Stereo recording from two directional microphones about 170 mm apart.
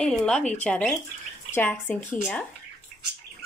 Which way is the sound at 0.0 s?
5° left (ahead or behind).